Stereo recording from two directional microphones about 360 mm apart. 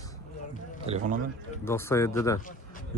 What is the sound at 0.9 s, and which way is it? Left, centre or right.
Speech, centre.